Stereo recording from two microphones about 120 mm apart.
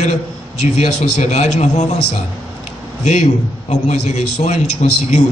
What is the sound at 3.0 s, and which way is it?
A man's voice, 70° left (ahead or behind).